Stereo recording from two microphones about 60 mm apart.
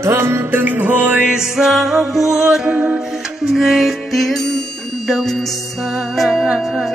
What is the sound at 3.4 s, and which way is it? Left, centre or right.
Music, centre.